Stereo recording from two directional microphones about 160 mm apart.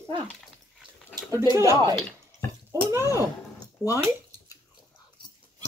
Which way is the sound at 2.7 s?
20° right (ahead or behind).